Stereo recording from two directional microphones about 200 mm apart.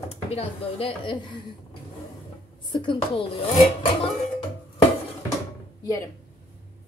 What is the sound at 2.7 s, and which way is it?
Speech, 25° left (ahead or behind).